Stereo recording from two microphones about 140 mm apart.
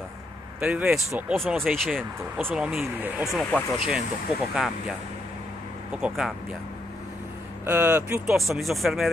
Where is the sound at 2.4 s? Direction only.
15° right (ahead or behind).